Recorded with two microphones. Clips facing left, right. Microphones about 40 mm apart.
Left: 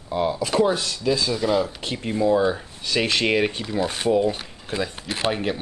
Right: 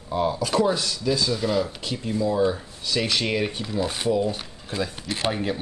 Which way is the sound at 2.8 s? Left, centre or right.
Left.